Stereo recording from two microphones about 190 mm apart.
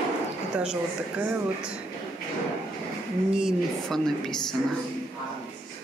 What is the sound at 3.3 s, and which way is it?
A woman's voice, 5° right (ahead or behind).